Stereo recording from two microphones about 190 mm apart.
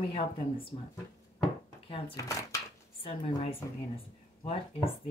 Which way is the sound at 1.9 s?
20° left (ahead or behind).